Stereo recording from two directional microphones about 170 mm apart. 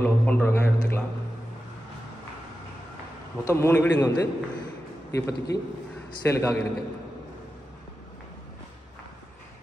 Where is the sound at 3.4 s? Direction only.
15° left (ahead or behind).